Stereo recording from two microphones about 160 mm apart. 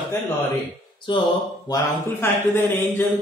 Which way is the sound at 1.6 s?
20° left (ahead or behind).